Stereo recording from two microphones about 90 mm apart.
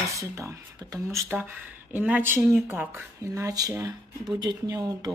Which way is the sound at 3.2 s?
40° right (ahead or behind).